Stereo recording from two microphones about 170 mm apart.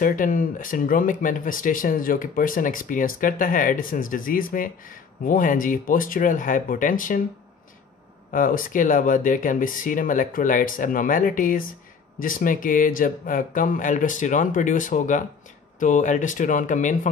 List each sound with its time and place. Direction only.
0.0 s speech: 50° left (ahead or behind)
8.3 s speech: 50° left (ahead or behind)